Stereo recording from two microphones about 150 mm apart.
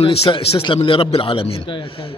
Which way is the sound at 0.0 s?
40° left (ahead or behind).